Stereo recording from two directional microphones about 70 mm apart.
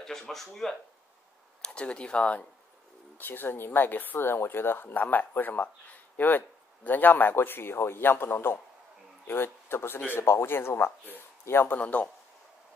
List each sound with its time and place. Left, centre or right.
0.0 s speech: centre
1.6 s speech: centre
3.2 s speech: left